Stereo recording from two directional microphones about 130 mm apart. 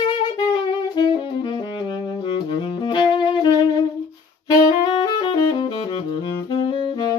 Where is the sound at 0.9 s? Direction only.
35° left (ahead or behind).